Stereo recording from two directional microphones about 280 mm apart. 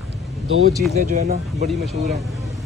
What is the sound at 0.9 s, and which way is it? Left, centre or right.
Speech, right.